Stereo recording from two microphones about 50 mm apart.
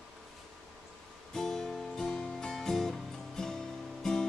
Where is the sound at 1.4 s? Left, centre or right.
Centre.